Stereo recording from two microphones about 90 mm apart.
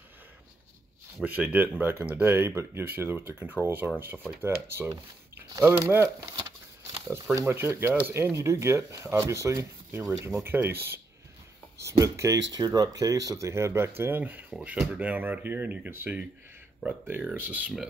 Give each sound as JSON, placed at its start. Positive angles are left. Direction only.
{"t": 1.2, "sound": "speech", "side_deg": -20}
{"t": 7.4, "sound": "speech", "side_deg": -25}